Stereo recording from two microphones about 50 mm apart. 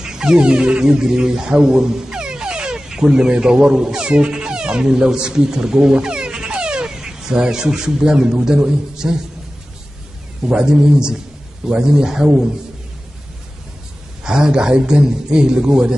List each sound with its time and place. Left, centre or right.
0.0 s speech: centre
10.5 s a man's voice: centre
14.2 s a man's voice: centre